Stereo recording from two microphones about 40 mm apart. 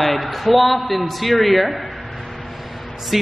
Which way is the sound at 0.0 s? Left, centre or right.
Centre.